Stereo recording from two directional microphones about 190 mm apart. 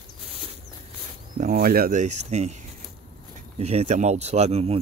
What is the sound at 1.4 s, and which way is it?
Speech, 50° right (ahead or behind).